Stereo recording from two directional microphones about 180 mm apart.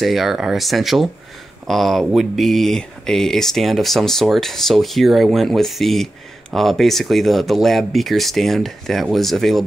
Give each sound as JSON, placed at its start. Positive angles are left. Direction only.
{"t": 0.0, "sound": "speech", "side_deg": 0}